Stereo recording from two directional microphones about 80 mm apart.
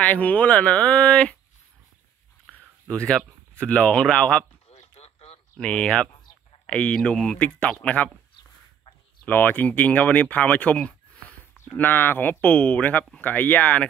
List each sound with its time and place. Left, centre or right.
0.0 s speech: centre
2.9 s speech: centre
5.6 s speech: centre
9.2 s speech: left